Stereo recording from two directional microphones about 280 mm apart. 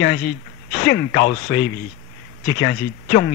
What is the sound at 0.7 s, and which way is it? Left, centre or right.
Speech, left.